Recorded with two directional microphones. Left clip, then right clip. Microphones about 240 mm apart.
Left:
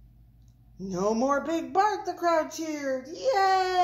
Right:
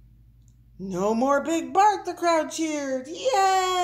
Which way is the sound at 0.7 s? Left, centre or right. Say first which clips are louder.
Right 3 dB; centre.